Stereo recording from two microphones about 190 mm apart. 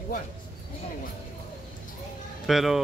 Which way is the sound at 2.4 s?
Centre (ahead or behind).